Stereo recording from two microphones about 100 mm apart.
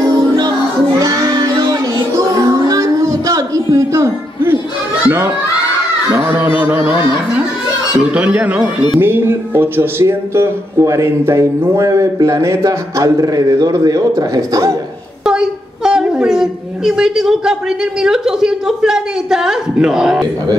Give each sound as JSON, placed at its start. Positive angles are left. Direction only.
{"t": 2.1, "sound": "music", "side_deg": -35}
{"t": 5.0, "sound": "a child's voice", "side_deg": -25}
{"t": 8.0, "sound": "speech", "side_deg": -15}
{"t": 15.2, "sound": "a woman's voice", "side_deg": -5}